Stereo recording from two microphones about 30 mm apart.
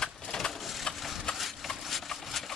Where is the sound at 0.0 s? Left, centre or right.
Left.